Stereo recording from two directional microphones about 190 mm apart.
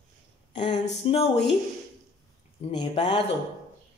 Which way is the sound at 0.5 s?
30° left (ahead or behind).